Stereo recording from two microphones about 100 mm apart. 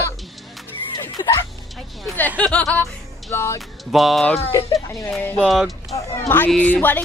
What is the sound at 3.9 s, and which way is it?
Speech, centre (ahead or behind).